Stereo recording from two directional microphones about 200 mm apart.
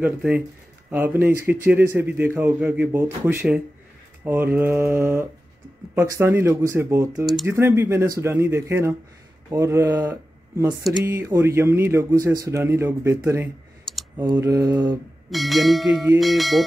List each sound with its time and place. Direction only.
0.0 s speech: 10° right (ahead or behind)
15.2 s speech: centre (ahead or behind)